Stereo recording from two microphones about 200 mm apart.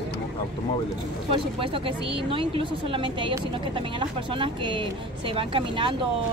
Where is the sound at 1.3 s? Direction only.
25° right (ahead or behind).